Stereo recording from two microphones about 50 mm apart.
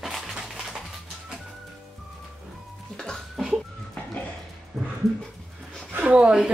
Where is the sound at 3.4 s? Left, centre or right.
Centre.